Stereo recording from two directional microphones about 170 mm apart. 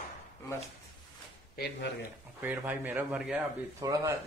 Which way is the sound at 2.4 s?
10° right (ahead or behind).